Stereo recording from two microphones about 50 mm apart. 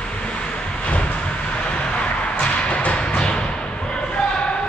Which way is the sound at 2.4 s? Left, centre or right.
Left.